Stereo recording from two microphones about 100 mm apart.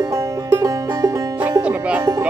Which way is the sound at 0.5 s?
35° right (ahead or behind).